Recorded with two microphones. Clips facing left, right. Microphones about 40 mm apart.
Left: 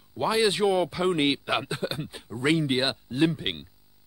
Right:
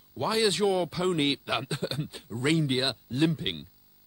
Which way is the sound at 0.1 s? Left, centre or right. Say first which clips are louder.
Left 2 dB; centre.